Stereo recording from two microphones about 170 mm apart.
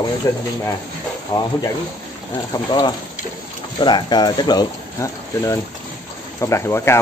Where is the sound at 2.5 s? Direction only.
25° left (ahead or behind).